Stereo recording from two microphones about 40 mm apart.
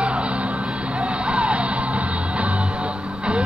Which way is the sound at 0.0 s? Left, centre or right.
Right.